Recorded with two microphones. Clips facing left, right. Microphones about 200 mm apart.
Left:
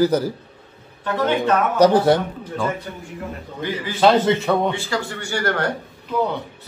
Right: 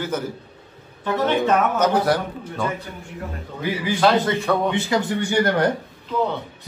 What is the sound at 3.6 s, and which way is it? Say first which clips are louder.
Speech: left 2 dB; 10° right (ahead or behind).